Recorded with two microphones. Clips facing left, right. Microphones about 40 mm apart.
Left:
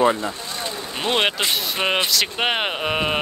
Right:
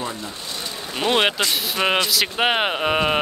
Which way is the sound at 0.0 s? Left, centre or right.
Left.